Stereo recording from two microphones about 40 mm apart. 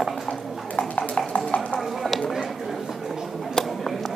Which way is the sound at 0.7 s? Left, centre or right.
Left.